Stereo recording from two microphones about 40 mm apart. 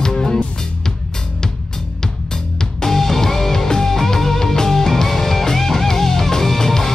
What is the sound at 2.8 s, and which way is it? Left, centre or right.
Music, centre.